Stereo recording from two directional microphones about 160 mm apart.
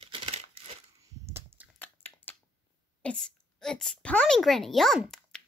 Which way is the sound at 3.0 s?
5° left (ahead or behind).